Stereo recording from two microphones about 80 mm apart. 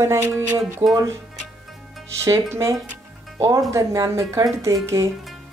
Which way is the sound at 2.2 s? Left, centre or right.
Right.